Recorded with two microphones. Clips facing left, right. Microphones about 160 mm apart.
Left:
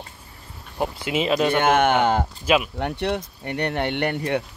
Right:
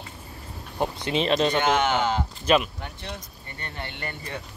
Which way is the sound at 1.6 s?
55° left (ahead or behind).